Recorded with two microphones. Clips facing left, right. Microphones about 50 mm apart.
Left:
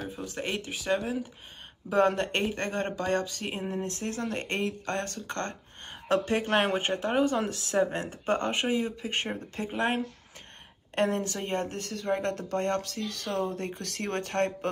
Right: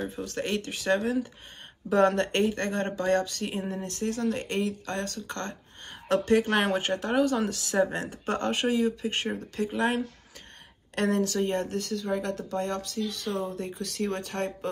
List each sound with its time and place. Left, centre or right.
0.1 s speech: centre; by 5.6 s left
6.0 s speech: left